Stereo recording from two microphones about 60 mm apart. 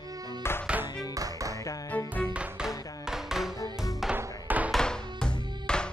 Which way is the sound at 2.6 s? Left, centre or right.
Centre.